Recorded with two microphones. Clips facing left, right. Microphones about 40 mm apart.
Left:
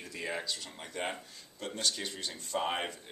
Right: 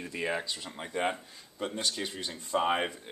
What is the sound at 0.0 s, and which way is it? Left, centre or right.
Speech, right.